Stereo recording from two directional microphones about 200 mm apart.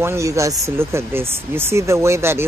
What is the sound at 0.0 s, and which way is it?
Speech, 15° right (ahead or behind).